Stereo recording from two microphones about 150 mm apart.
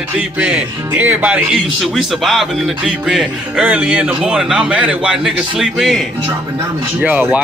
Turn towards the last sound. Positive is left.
turn(degrees=-10)  # may be behind; listen again after turning